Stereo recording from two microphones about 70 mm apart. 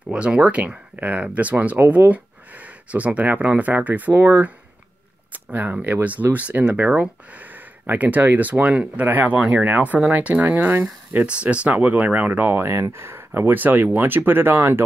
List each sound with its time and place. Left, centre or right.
0.0 s speech: centre
5.5 s speech: right